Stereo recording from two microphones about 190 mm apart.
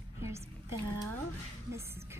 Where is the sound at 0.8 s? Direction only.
20° left (ahead or behind).